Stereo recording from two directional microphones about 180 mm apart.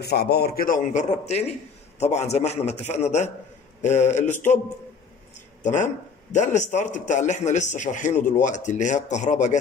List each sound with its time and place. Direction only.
0.0 s a man's voice: 60° left (ahead or behind); by 4.6 s 40° left (ahead or behind)
5.6 s a man's voice: 45° left (ahead or behind)